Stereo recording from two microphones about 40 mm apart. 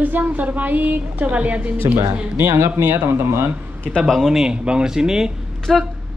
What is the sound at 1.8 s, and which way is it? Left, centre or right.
Speech, right.